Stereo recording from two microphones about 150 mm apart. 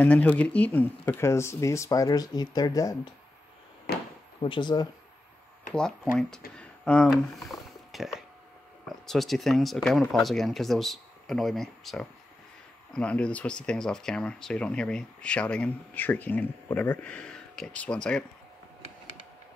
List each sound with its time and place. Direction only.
0.0 s speech: 10° left (ahead or behind)
3.9 s a sound: 90° left
4.4 s speech: 35° left (ahead or behind)
5.7 s speech: 5° left (ahead or behind)